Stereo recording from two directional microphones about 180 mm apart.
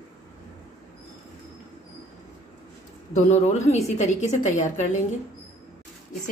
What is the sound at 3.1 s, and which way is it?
A woman's voice, 40° left (ahead or behind).